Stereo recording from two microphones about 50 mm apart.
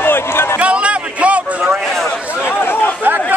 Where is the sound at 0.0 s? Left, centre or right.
Left.